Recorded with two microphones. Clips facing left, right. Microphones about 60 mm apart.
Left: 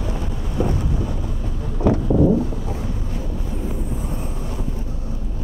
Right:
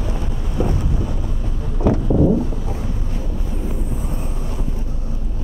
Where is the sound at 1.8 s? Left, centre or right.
Right.